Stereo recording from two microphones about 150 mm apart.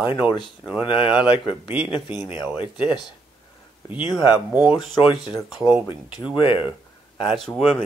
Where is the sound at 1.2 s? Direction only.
35° left (ahead or behind).